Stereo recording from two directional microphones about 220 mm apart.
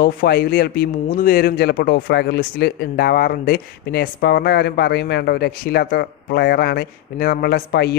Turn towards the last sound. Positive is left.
turn(degrees=45)  # may be behind; listen again after turning